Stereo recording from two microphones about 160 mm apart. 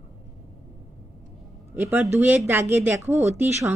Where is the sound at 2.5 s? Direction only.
15° right (ahead or behind).